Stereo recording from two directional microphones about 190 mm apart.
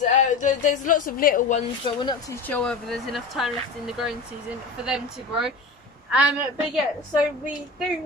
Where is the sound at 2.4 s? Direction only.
5° left (ahead or behind).